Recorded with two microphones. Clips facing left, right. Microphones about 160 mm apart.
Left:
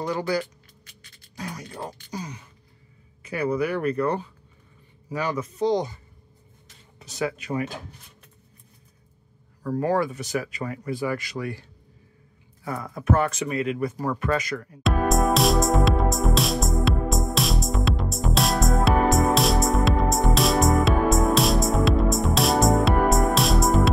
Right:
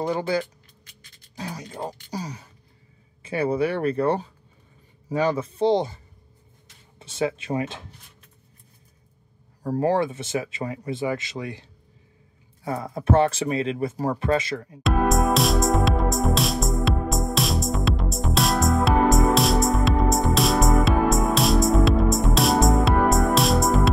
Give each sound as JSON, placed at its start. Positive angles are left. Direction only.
{"t": 0.0, "sound": "speech", "side_deg": -25}
{"t": 1.3, "sound": "a sound", "side_deg": -30}
{"t": 2.0, "sound": "speech", "side_deg": -35}
{"t": 7.0, "sound": "speech", "side_deg": -25}
{"t": 9.6, "sound": "speech", "side_deg": -35}
{"t": 12.6, "sound": "speech", "side_deg": -25}
{"t": 14.8, "sound": "music", "side_deg": 0}